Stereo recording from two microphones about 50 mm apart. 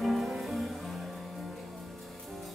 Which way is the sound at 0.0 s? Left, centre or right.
Centre.